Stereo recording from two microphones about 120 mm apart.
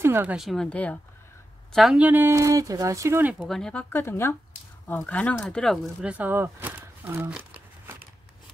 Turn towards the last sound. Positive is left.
turn(degrees=-15)  # may be behind; listen again after turning